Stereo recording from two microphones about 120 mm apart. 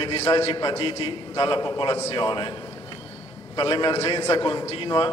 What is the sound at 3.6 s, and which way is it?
A man's voice, 45° left (ahead or behind).